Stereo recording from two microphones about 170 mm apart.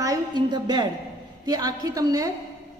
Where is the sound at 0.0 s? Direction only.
20° right (ahead or behind).